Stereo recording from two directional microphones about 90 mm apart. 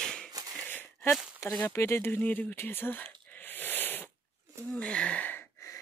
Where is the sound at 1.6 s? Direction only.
25° left (ahead or behind).